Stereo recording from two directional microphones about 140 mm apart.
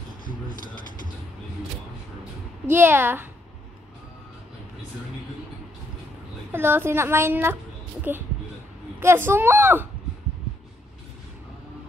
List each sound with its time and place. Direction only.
2.7 s a woman's voice: 15° right (ahead or behind)
6.5 s a woman's voice: 15° right (ahead or behind)